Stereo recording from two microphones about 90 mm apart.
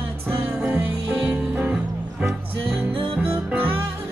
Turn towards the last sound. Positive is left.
turn(degrees=-20)  # may be behind; listen again after turning